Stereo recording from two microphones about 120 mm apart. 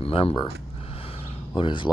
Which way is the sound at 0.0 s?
50° left (ahead or behind).